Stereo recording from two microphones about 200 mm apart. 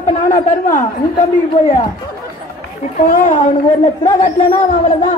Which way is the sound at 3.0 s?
40° left (ahead or behind).